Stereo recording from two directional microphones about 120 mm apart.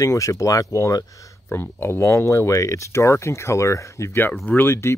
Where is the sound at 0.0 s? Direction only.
25° left (ahead or behind).